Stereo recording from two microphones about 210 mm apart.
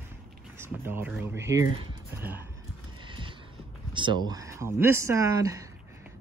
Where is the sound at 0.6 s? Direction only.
10° right (ahead or behind).